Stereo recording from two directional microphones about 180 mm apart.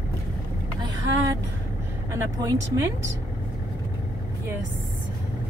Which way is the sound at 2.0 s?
15° right (ahead or behind).